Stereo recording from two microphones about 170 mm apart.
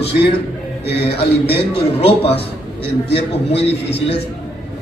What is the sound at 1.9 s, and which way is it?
A man's voice, 35° left (ahead or behind).